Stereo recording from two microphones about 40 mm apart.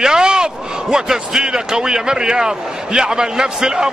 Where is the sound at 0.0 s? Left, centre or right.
Centre.